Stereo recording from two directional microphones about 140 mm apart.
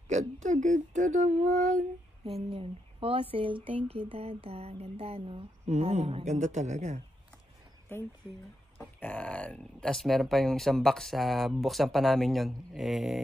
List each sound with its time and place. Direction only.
0.1 s speech: 60° right (ahead or behind)
2.5 s speech: 40° right (ahead or behind)
4.1 s a sound: 45° right (ahead or behind)
8.7 s speech: 10° left (ahead or behind)